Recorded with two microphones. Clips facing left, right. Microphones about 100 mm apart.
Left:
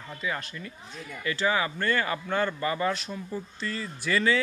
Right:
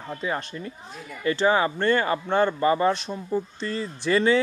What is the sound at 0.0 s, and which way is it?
Speech, 35° right (ahead or behind).